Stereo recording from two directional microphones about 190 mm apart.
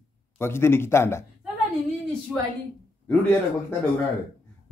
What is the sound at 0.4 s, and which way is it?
Speech, 10° left (ahead or behind).